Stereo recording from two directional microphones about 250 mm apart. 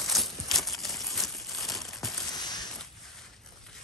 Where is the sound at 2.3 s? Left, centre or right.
Centre.